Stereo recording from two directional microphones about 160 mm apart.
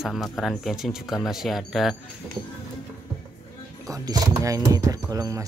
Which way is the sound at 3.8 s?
20° right (ahead or behind).